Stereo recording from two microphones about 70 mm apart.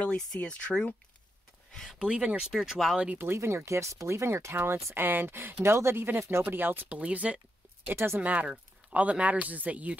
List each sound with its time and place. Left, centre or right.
0.0 s speech: centre
2.0 s speech: centre
3.2 s speech: right
7.0 s speech: centre
7.9 s speech: right
8.2 s speech: right